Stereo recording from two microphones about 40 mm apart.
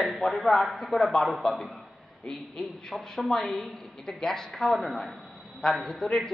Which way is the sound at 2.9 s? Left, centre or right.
Centre.